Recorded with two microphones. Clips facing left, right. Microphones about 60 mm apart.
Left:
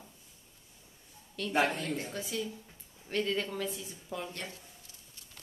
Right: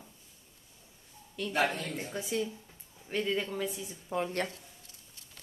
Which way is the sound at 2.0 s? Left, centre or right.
Centre.